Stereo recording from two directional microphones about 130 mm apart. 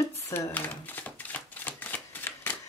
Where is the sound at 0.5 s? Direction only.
15° left (ahead or behind).